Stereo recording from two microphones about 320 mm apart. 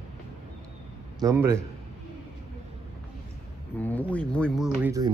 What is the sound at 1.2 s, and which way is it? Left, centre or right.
Speech, centre.